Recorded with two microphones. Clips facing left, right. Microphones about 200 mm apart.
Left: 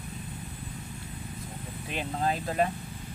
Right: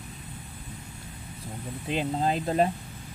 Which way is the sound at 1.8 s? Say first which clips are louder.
Right 3 dB; 25° right (ahead or behind).